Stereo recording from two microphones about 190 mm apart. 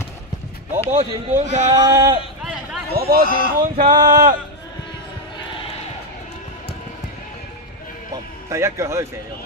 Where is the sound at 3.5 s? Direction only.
45° right (ahead or behind).